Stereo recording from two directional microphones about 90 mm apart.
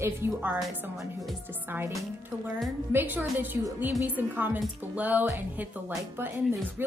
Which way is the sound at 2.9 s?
25° right (ahead or behind).